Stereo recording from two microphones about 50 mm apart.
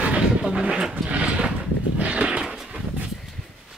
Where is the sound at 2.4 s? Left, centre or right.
Centre.